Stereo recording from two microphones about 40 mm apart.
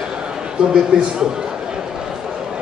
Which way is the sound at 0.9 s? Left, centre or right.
Right.